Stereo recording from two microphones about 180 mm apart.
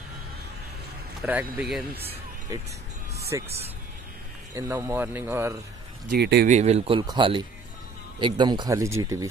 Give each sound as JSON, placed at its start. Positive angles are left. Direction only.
{"t": 1.2, "sound": "speech", "side_deg": -10}
{"t": 3.4, "sound": "speech", "side_deg": -35}
{"t": 4.6, "sound": "speech", "side_deg": -15}
{"t": 6.0, "sound": "speech", "side_deg": -70}
{"t": 6.4, "sound": "speech", "side_deg": -40}